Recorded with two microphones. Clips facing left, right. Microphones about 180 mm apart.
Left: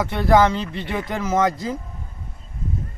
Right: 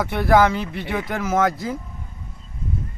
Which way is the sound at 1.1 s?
15° left (ahead or behind).